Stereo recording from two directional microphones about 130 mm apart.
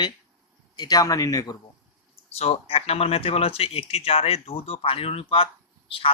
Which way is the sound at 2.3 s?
50° left (ahead or behind).